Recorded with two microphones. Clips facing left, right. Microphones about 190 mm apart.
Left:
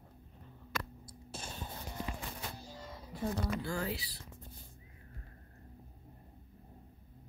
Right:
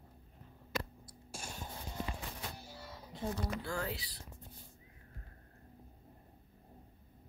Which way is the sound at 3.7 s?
5° left (ahead or behind).